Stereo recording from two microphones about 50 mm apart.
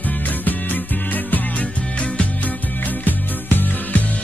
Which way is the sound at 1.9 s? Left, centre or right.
Left.